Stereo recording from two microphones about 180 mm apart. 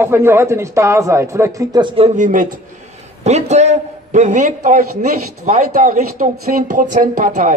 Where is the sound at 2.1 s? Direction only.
45° right (ahead or behind).